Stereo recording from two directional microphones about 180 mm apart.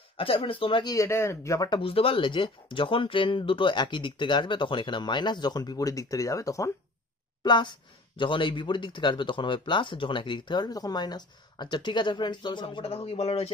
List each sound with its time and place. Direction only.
0.2 s speech: 30° left (ahead or behind)